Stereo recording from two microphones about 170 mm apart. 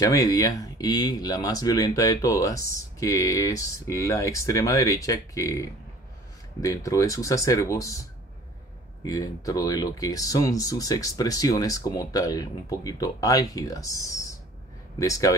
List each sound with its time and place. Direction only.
0.0 s speech: 20° left (ahead or behind)